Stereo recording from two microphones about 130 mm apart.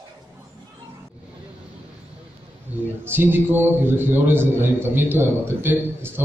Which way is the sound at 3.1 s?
15° right (ahead or behind).